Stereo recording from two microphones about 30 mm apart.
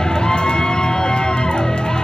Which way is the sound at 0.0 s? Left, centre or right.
Left.